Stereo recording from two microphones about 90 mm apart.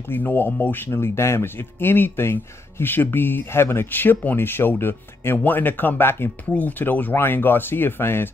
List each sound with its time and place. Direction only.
0.1 s speech: 20° left (ahead or behind)